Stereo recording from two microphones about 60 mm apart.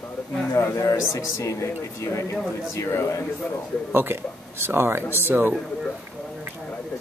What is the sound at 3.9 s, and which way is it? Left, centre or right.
A man's voice, right.